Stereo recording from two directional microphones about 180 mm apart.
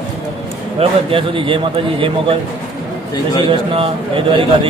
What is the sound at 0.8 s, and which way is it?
A man's voice, 30° right (ahead or behind).